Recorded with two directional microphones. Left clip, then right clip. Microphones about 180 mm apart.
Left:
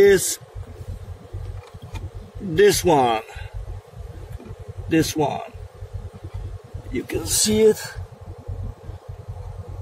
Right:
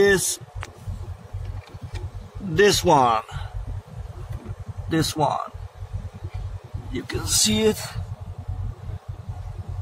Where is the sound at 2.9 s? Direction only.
30° right (ahead or behind).